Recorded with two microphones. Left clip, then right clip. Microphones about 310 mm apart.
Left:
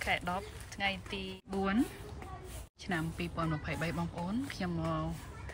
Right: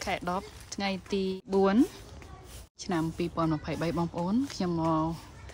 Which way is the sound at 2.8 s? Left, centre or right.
Centre.